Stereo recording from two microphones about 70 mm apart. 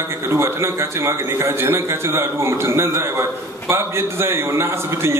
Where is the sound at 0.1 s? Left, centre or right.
Right.